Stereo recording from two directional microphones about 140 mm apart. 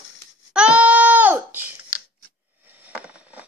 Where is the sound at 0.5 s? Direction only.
10° right (ahead or behind).